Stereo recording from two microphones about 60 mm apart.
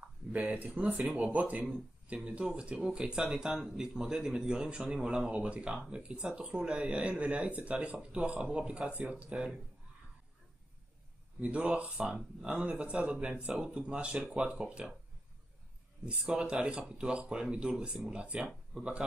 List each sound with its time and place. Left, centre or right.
0.0 s a sound: right
1.1 s speech: right
11.4 s speech: right
16.1 s speech: centre